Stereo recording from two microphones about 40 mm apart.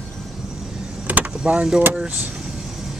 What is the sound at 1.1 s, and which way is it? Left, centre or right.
Vehicle, right.